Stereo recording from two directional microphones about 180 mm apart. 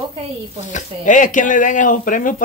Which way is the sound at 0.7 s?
45° left (ahead or behind).